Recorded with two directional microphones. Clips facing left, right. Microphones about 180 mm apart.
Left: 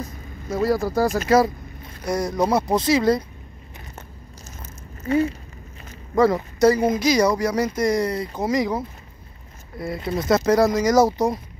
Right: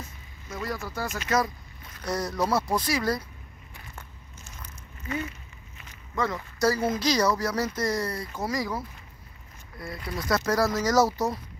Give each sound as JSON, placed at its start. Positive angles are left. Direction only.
{"t": 0.0, "sound": "speech", "side_deg": 35}
{"t": 2.0, "sound": "speech", "side_deg": 15}
{"t": 4.5, "sound": "a sound", "side_deg": 40}
{"t": 6.6, "sound": "speech", "side_deg": 20}